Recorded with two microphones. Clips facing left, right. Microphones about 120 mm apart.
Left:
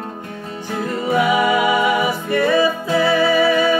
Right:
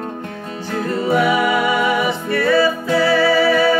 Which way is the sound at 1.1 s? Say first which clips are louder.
Even; 15° left (ahead or behind).